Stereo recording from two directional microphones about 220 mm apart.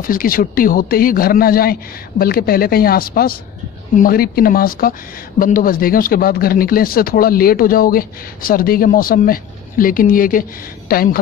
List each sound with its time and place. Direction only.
0.0 s speech: 40° left (ahead or behind)